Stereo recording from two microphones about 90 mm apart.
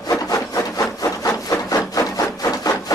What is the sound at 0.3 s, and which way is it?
Wood, 40° left (ahead or behind).